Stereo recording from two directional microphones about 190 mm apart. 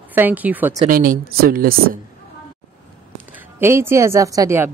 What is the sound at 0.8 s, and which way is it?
Speech, 45° right (ahead or behind).